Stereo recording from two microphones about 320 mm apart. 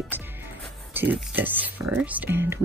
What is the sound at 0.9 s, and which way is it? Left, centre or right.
Speech, centre.